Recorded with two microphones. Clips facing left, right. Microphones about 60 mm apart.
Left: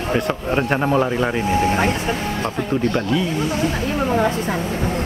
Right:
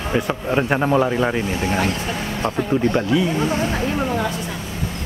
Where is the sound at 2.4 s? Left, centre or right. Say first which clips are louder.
Right 3 dB; right.